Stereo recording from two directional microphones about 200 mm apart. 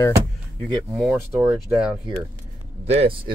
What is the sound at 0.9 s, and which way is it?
Speech, centre (ahead or behind).